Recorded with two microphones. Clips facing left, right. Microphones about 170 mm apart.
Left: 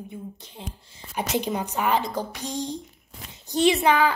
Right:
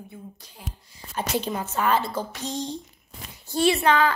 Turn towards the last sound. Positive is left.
turn(degrees=10)  # may be behind; listen again after turning